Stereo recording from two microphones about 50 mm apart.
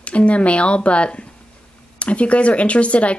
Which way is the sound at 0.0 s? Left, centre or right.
Left.